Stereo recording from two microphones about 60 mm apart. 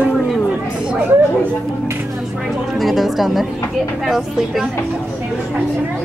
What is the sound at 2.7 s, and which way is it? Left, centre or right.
Speech, centre.